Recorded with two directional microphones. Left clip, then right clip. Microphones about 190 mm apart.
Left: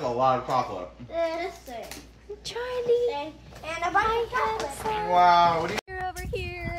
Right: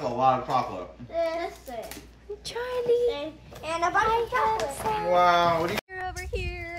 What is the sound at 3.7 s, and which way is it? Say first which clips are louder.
Speech: right 1 dB; 55° right (ahead or behind).